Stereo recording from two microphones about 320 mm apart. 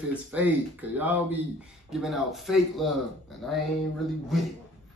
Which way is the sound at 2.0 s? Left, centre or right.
Centre.